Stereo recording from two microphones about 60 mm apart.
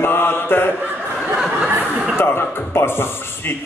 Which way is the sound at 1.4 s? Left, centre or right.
Centre.